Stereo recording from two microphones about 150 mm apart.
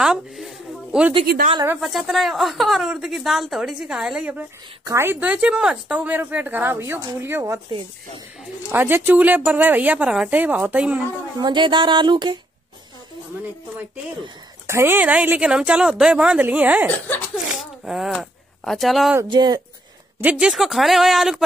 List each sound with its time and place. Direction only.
0.0 s a woman's voice: 5° right (ahead or behind)
1.2 s speech: 90° right
1.8 s a woman's voice: centre (ahead or behind); by 7.6 s 15° right (ahead or behind)
8.7 s speech: 15° right (ahead or behind)
11.3 s speech: 30° right (ahead or behind)
14.7 s speech: 15° right (ahead or behind)
19.2 s speech: 30° right (ahead or behind)
20.2 s a woman's voice: 5° right (ahead or behind)